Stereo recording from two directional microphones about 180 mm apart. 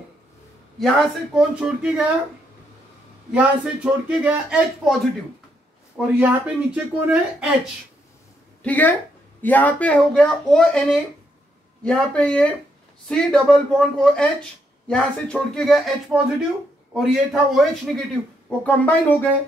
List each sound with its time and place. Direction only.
0.7 s speech: centre (ahead or behind)
3.3 s speech: 5° right (ahead or behind)
5.9 s speech: 5° right (ahead or behind)
8.6 s speech: 10° left (ahead or behind)